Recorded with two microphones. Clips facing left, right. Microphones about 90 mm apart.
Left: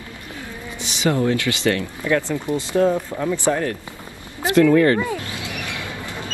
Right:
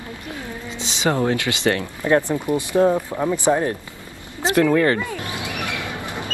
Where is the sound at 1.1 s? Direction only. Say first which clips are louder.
Even; 50° right (ahead or behind).